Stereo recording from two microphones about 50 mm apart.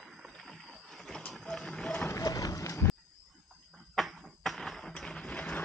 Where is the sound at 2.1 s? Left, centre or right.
Left.